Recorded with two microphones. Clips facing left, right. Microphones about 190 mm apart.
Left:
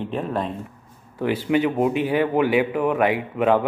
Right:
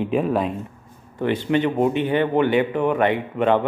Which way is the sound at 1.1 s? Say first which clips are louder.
Even; 5° left (ahead or behind).